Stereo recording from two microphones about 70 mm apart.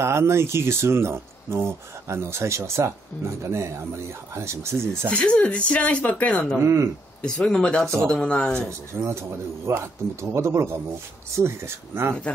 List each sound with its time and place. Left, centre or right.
0.0 s speech: right
5.1 s speech: centre
6.6 s speech: right
7.2 s speech: centre
8.9 s speech: right